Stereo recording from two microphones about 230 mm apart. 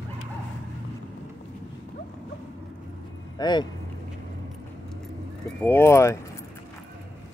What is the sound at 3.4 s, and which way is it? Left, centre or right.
Speech, centre.